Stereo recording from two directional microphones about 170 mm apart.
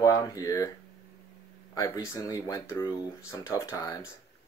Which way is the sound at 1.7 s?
20° left (ahead or behind).